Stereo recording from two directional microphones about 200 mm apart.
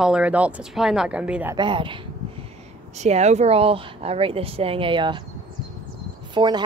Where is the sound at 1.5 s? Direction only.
25° right (ahead or behind).